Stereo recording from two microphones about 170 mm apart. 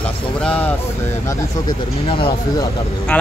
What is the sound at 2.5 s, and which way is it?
Speech, 20° left (ahead or behind).